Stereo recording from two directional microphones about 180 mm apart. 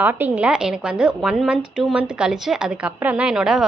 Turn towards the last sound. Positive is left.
turn(degrees=-5)  # may be behind; listen again after turning